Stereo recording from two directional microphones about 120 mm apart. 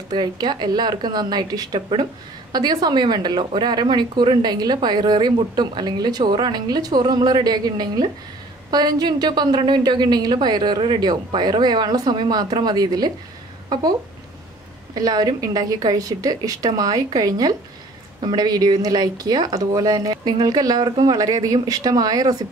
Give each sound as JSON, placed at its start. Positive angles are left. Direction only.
{"t": 0.1, "sound": "a woman's voice", "side_deg": -35}
{"t": 15.0, "sound": "a woman's voice", "side_deg": -30}